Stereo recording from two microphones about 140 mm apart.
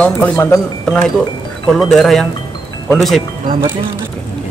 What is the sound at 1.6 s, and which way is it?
Speech, 5° left (ahead or behind).